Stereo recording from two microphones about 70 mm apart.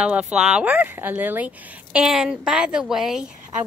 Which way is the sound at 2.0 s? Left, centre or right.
Centre.